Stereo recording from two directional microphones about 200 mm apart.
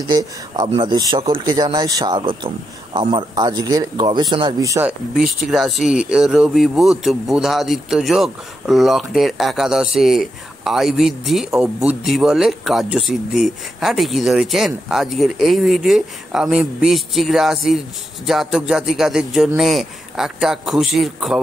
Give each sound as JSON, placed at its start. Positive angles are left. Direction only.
{"t": 0.0, "sound": "a man's voice", "side_deg": -20}